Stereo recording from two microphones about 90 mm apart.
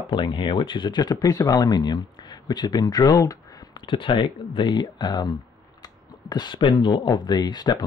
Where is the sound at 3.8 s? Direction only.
65° left (ahead or behind).